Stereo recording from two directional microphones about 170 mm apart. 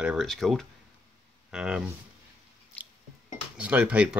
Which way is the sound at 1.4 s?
5° right (ahead or behind).